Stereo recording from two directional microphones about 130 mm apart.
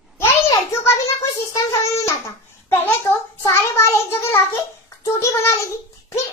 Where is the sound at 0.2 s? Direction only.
20° left (ahead or behind).